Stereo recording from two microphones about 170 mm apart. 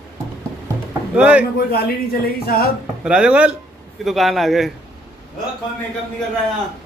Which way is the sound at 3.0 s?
5° right (ahead or behind).